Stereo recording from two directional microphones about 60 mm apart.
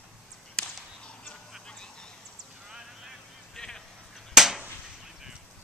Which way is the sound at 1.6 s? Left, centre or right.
Centre.